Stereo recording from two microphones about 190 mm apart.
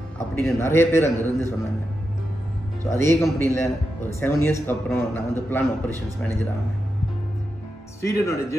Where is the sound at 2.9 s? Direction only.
15° left (ahead or behind).